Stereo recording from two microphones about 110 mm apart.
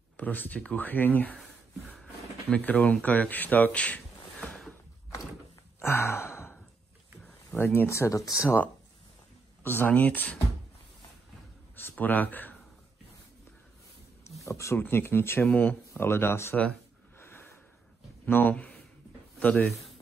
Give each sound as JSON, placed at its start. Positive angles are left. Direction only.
{"t": 0.2, "sound": "speech", "side_deg": 15}
{"t": 2.5, "sound": "speech", "side_deg": 15}
{"t": 5.8, "sound": "sigh", "side_deg": 20}
{"t": 7.5, "sound": "speech", "side_deg": 20}
{"t": 9.6, "sound": "speech", "side_deg": 20}
{"t": 11.9, "sound": "speech", "side_deg": 15}
{"t": 14.4, "sound": "speech", "side_deg": 25}
{"t": 17.2, "sound": "snort", "side_deg": 20}
{"t": 18.2, "sound": "speech", "side_deg": 15}